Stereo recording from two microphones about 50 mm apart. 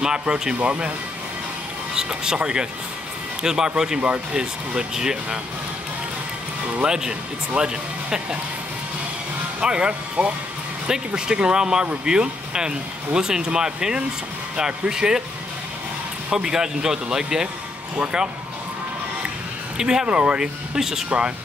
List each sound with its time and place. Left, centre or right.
0.0 s speech: centre
2.0 s speech: centre
4.0 s speech: right
4.4 s speech: centre
6.7 s speech: centre
9.6 s speech: centre
16.3 s speech: centre
19.8 s speech: centre
20.2 s speech: right
20.7 s speech: centre